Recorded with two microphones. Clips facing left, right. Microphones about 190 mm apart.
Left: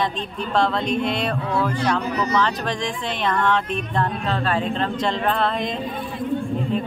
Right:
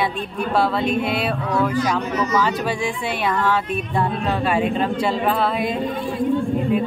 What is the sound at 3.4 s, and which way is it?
A woman's voice, 5° right (ahead or behind).